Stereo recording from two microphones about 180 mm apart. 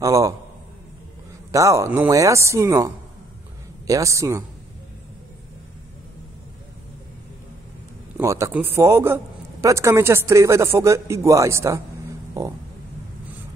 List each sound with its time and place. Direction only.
0.0 s a man's voice: 20° right (ahead or behind)
1.5 s a man's voice: 15° right (ahead or behind)
8.2 s a man's voice: 15° right (ahead or behind)